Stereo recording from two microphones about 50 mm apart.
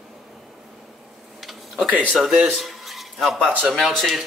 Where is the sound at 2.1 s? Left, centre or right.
Centre.